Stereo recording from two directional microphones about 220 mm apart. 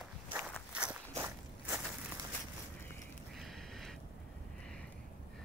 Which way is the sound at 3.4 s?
Centre (ahead or behind).